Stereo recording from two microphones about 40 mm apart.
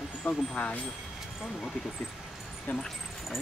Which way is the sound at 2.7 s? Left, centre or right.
Left.